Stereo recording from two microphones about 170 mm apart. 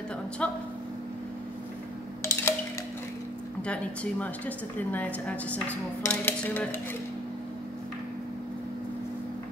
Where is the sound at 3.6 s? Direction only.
5° left (ahead or behind).